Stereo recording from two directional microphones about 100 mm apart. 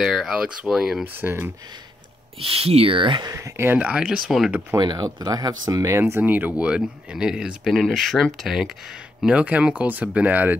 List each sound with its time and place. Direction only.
0.0 s speech: 5° right (ahead or behind)
1.0 s speech: 20° right (ahead or behind)
2.3 s speech: 70° right (ahead or behind)
3.2 s speech: 35° right (ahead or behind)
3.7 s speech: 10° right (ahead or behind)
4.7 s speech: 45° right (ahead or behind); by 10.6 s 15° right (ahead or behind)